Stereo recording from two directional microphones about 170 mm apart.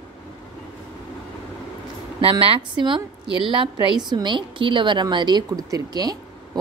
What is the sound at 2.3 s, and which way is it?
A woman's voice, 30° right (ahead or behind).